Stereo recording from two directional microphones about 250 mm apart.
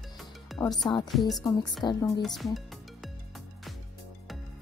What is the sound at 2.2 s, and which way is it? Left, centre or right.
Music, centre.